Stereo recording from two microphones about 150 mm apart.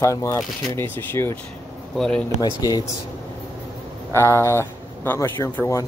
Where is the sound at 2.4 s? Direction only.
25° left (ahead or behind).